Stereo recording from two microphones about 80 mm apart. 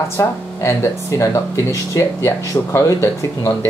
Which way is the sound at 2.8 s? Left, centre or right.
Left.